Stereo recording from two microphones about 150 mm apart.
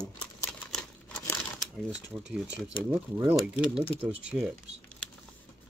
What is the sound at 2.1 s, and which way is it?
Speech, 25° right (ahead or behind).